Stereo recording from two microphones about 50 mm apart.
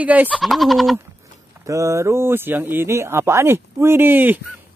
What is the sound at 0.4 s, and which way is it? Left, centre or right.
Speech, centre.